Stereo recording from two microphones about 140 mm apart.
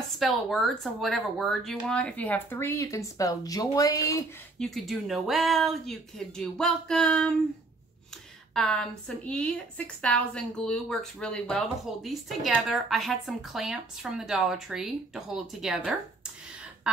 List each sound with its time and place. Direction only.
0.2 s a woman's voice: centre (ahead or behind); by 4.2 s 25° left (ahead or behind)
4.6 s a woman's voice: centre (ahead or behind)
8.5 s a woman's voice: 5° left (ahead or behind)